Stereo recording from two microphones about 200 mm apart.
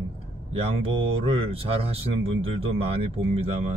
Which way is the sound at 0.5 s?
30° right (ahead or behind).